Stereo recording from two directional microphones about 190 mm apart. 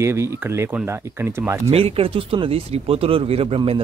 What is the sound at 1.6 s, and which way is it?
Speech, 30° right (ahead or behind).